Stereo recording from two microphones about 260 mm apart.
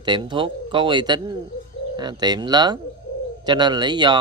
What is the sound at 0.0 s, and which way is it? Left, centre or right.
Speech, centre.